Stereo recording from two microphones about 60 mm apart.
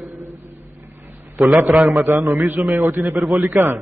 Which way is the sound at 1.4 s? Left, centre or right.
Centre.